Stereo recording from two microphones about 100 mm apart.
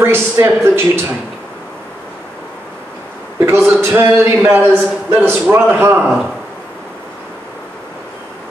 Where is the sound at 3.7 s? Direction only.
25° right (ahead or behind).